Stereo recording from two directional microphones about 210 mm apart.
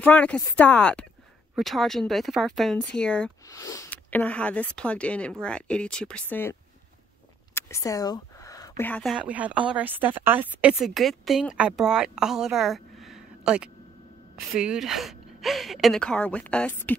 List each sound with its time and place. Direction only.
0.0 s speech: 5° left (ahead or behind)
3.5 s speech: 15° left (ahead or behind)
7.5 s speech: 15° left (ahead or behind)